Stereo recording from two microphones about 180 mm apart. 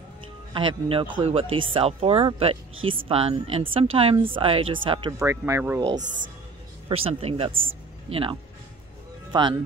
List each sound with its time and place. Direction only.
0.6 s speech: 30° right (ahead or behind)
5.2 s speech: 15° right (ahead or behind)
6.9 s speech: 35° right (ahead or behind)